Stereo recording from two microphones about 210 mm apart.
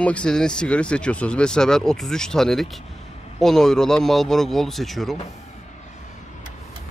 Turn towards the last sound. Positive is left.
turn(degrees=0)  # may be behind; listen again after turning